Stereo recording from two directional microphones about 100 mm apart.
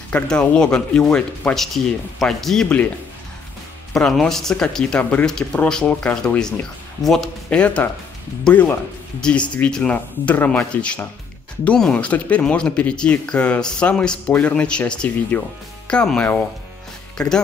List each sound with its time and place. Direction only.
0.1 s speech: 10° left (ahead or behind)
3.9 s speech: 5° left (ahead or behind)
7.4 s speech: 15° left (ahead or behind)
9.2 s speech: 10° left (ahead or behind)